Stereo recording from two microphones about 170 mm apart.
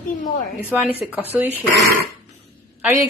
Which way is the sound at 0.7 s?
10° right (ahead or behind).